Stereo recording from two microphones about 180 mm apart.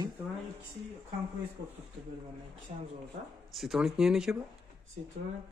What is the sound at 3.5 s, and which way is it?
Speech, centre (ahead or behind).